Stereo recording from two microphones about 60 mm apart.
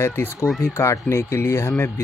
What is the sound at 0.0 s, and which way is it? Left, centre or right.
Speech, left.